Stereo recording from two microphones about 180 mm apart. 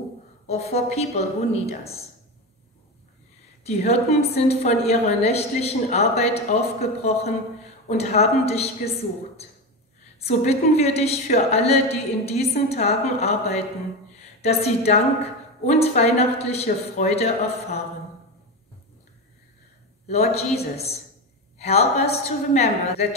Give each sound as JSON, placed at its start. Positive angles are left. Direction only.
{"t": 0.5, "sound": "a woman's voice", "side_deg": 35}
{"t": 3.6, "sound": "a woman's voice", "side_deg": 35}
{"t": 10.2, "sound": "a woman's voice", "side_deg": 35}
{"t": 20.1, "sound": "a woman's voice", "side_deg": 35}